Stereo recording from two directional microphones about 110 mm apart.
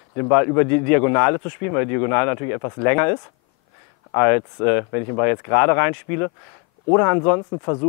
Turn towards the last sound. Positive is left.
turn(degrees=25)  # may be behind; listen again after turning